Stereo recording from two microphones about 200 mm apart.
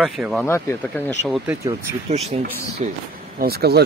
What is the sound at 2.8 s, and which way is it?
Speech, 35° right (ahead or behind).